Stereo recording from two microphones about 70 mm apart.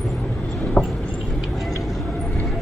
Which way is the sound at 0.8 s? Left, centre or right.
Centre.